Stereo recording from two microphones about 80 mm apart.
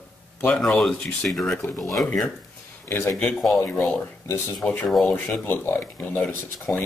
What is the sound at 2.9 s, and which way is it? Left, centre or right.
Speech, left.